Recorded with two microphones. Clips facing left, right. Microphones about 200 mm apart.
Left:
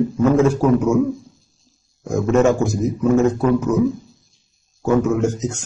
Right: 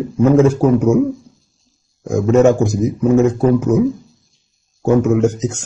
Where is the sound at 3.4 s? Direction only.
30° right (ahead or behind).